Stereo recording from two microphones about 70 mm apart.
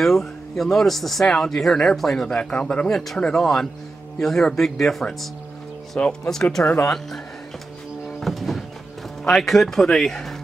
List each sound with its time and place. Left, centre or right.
0.0 s speech: centre
8.2 s a sound: centre
9.2 s speech: centre